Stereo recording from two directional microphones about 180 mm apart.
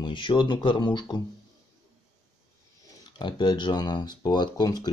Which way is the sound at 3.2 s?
25° left (ahead or behind).